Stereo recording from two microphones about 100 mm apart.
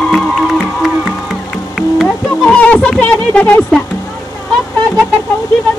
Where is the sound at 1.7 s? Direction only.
5° left (ahead or behind).